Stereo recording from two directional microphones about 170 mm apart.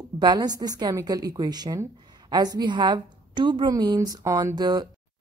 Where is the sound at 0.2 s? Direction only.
25° right (ahead or behind).